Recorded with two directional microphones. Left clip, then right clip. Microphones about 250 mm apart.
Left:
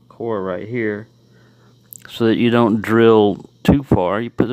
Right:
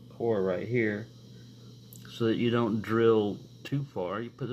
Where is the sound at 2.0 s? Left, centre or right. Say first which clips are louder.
Left 12 dB; left.